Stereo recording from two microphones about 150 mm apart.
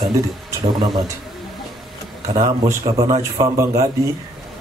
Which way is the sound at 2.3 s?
25° right (ahead or behind).